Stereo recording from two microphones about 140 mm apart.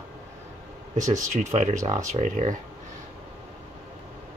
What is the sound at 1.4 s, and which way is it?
Speech, 60° right (ahead or behind).